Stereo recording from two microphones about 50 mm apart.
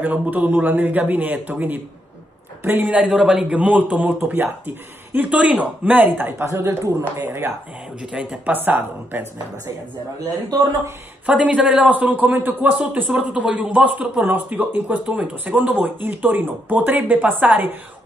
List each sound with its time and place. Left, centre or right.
0.0 s speech: right
3.1 s speech: centre
3.4 s speech: right
4.2 s speech: right
6.3 s a woman's voice: right
8.0 s speech: centre
8.5 s speech: right
11.2 s speech: right
11.9 s speech: right
13.1 s speech: right
14.2 s speech: right